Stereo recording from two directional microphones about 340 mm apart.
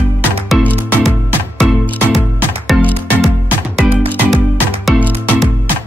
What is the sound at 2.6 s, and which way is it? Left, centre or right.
Music, centre.